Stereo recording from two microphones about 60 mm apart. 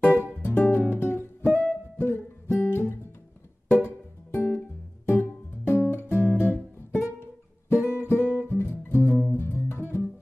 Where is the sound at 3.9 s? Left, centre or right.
Left.